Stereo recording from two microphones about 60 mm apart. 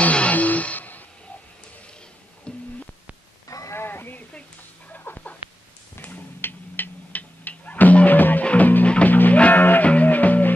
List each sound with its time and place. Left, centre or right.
0.0 s music: left
2.5 s busy signal: centre
3.4 s a sound: left
3.7 s a sound: left
4.9 s chicken: left
5.9 s cat: left
8.5 s music: left